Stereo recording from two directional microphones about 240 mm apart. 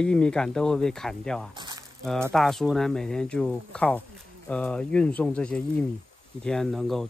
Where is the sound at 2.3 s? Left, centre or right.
Centre.